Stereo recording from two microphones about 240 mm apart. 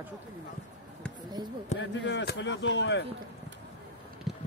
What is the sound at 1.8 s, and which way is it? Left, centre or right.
Speech, left.